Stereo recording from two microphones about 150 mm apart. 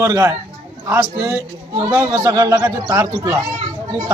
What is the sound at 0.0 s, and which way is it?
Speech, 20° right (ahead or behind).